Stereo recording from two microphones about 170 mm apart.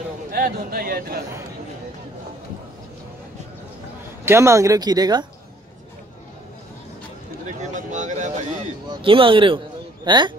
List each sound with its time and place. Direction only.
0.3 s a man's voice: 60° right (ahead or behind)
4.2 s speech: 15° right (ahead or behind)
7.6 s a sound: 45° right (ahead or behind)
9.0 s speech: 30° right (ahead or behind)